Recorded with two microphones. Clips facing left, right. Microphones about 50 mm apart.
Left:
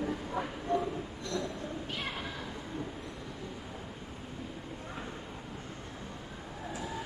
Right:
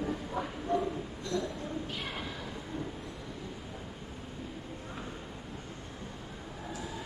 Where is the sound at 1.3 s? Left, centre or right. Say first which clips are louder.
Right 2 dB; centre.